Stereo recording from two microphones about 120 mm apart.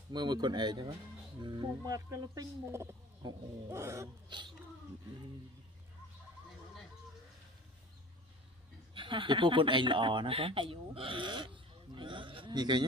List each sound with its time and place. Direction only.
0.1 s speech: 35° right (ahead or behind)
3.2 s speech: 35° right (ahead or behind)
3.8 s speech: 25° right (ahead or behind)
4.3 s a sound: 40° right (ahead or behind)
8.9 s speech: 45° right (ahead or behind)